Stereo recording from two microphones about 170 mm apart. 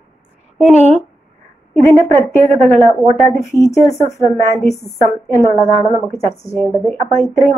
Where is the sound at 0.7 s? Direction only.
40° right (ahead or behind).